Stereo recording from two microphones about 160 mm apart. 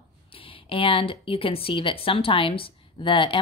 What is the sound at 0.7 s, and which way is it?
A woman's voice, 35° left (ahead or behind).